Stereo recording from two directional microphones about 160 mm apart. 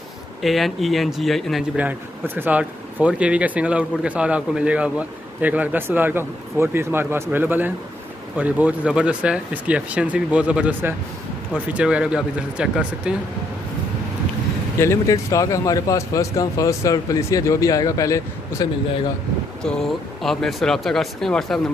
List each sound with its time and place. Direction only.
0.4 s speech: centre (ahead or behind)
14.8 s speech: 20° left (ahead or behind)
20.2 s speech: centre (ahead or behind)